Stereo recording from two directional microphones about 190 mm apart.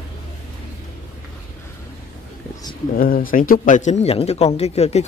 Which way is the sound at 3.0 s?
50° left (ahead or behind).